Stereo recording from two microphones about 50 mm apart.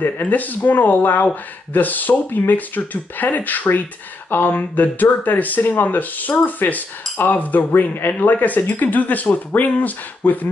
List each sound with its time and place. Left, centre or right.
0.0 s speech: left